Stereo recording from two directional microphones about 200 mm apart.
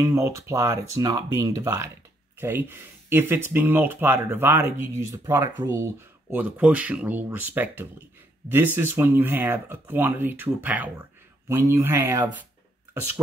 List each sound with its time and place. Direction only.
0.0 s speech: 15° right (ahead or behind)